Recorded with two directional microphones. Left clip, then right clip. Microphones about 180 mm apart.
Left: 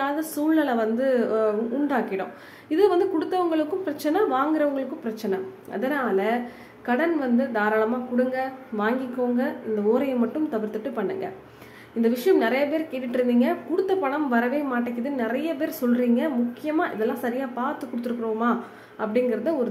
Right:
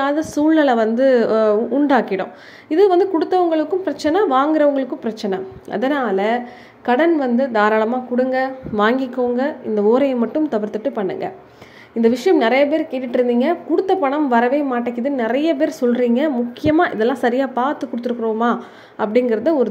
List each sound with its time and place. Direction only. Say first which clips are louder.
0.0 s a woman's voice: right 8 dB; 30° right (ahead or behind)